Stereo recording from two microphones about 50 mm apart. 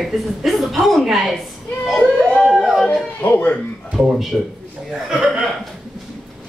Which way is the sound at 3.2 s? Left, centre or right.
Left.